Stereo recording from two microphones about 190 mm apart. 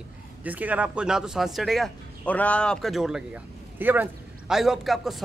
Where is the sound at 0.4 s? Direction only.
10° right (ahead or behind).